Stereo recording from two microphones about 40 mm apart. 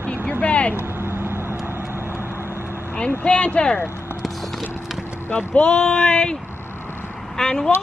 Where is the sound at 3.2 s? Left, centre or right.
Left.